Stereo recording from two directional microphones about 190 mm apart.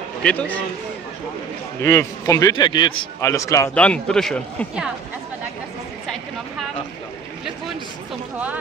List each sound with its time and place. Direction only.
0.2 s a man's voice: 5° left (ahead or behind)
1.8 s a man's voice: 15° left (ahead or behind); by 4.9 s centre (ahead or behind)